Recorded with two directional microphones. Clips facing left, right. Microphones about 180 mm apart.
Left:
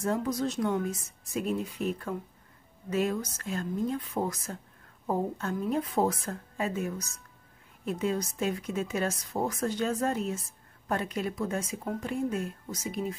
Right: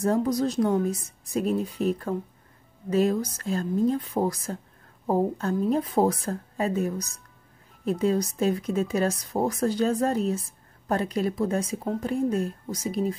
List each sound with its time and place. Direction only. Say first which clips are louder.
0.0 s a woman's voice: right 6 dB; 35° right (ahead or behind)